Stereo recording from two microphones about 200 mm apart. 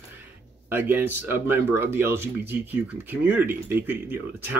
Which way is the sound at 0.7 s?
10° right (ahead or behind).